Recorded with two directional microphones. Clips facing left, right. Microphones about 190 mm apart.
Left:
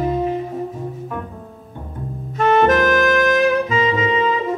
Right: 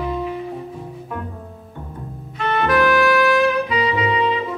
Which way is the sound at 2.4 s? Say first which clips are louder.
Left 4 dB; 45° left (ahead or behind).